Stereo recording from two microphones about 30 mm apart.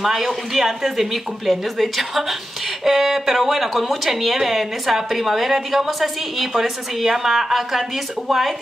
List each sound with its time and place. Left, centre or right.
0.0 s a woman's voice: centre